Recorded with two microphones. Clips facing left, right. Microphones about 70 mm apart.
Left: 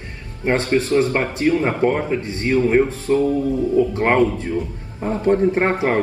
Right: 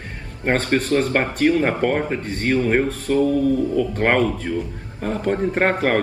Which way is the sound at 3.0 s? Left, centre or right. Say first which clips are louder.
Even; left.